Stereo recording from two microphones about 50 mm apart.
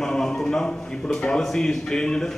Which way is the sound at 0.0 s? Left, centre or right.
Centre.